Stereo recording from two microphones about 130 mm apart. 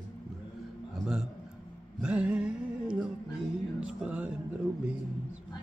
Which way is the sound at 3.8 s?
10° right (ahead or behind).